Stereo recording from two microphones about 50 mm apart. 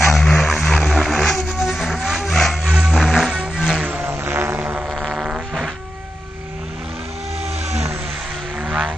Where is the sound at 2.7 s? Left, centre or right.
Centre.